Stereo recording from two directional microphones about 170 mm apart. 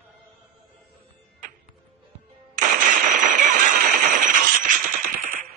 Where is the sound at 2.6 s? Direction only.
50° right (ahead or behind).